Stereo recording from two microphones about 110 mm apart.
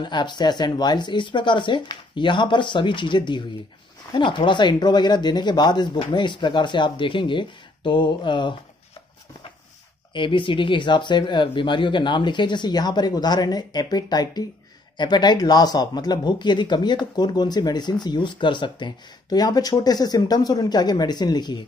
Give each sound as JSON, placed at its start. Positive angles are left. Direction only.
{"t": 0.0, "sound": "speech", "side_deg": 45}
{"t": 10.1, "sound": "speech", "side_deg": 50}